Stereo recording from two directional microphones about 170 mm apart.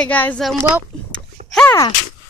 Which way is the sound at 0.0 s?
10° left (ahead or behind).